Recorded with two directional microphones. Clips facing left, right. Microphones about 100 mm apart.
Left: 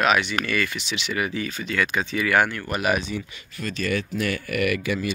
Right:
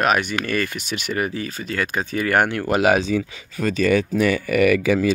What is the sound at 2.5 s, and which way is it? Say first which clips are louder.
Speech: right 7 dB; 90° right.